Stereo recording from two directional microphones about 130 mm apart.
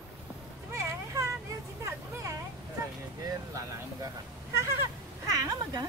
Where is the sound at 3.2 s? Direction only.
25° right (ahead or behind).